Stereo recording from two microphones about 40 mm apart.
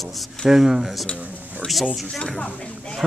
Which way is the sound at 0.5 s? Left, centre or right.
Centre.